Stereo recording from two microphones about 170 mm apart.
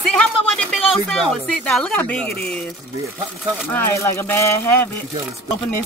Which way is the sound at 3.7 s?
10° left (ahead or behind).